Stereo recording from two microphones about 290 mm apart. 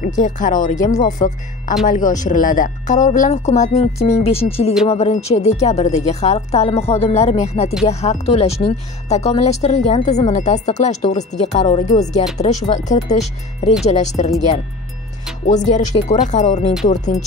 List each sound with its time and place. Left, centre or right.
0.2 s speech: left
15.4 s speech: left